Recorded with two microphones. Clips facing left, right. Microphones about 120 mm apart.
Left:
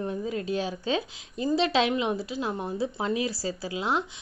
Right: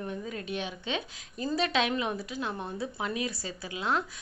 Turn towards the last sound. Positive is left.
turn(degrees=30)  # may be behind; listen again after turning